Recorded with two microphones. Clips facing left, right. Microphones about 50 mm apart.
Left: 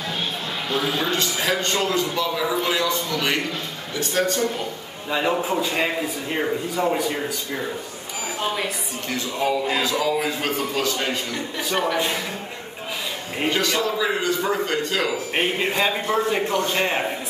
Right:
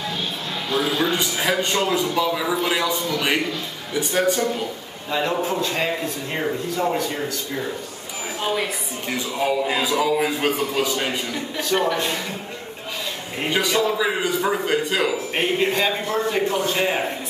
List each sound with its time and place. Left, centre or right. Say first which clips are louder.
0.7 s a man's voice: right 2 dB; centre
5.1 s a man's voice: even; centre
9.1 s a man's voice: right 1 dB; centre
11.7 s a man's voice: right 1 dB; centre
13.5 s a man's voice: right 2 dB; centre
15.7 s a man's voice: even; centre